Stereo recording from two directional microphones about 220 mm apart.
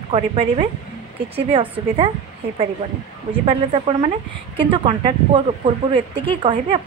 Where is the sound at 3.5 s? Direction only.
25° right (ahead or behind).